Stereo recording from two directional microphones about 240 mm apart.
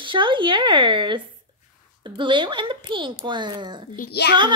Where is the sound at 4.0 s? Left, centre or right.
Left.